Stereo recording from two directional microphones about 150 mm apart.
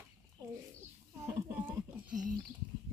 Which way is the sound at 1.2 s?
15° right (ahead or behind).